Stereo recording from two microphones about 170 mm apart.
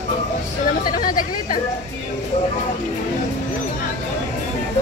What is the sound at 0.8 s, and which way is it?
Hubbub, 55° left (ahead or behind).